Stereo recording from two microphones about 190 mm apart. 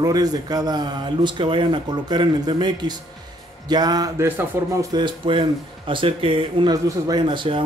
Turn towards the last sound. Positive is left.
turn(degrees=-25)  # may be behind; listen again after turning